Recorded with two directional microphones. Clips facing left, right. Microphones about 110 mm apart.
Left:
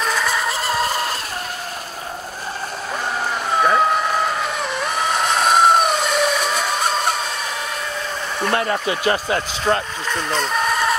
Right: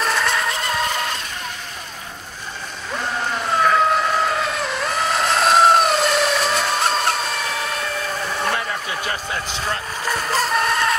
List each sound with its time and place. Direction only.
0.0 s a sound: centre (ahead or behind)
0.8 s chicken: 35° left (ahead or behind)
3.6 s vehicle: 5° left (ahead or behind)
8.5 s speech: 75° left (ahead or behind)
9.7 s speech: 55° left (ahead or behind)
10.0 s speech: 5° right (ahead or behind)